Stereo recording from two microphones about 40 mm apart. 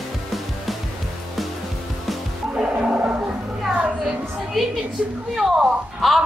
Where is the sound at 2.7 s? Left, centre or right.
Right.